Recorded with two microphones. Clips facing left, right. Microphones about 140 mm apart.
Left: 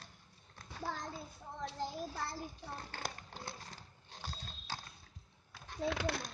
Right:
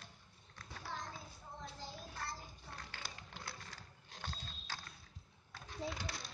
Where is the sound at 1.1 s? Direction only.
75° left (ahead or behind).